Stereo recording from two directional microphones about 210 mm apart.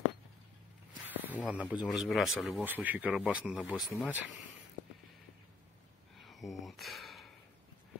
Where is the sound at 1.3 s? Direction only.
5° right (ahead or behind).